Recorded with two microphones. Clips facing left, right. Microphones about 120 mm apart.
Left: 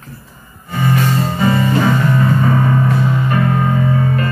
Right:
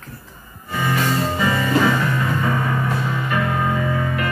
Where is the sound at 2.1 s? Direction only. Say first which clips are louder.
Left 6 dB; 35° left (ahead or behind).